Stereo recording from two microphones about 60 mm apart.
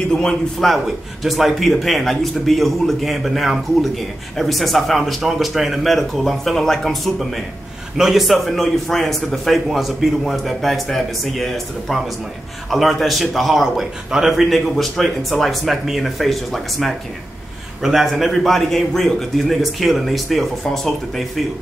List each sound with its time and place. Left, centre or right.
0.1 s a man's voice: centre